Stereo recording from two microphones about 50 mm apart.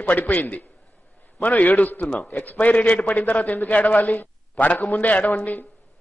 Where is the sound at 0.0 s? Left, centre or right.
Left.